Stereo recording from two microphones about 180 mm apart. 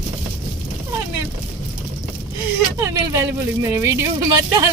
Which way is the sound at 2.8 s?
15° right (ahead or behind).